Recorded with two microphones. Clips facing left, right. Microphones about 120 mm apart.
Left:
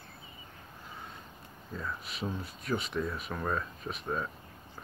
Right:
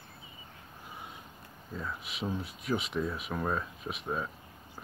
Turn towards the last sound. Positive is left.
turn(degrees=-5)  # may be behind; listen again after turning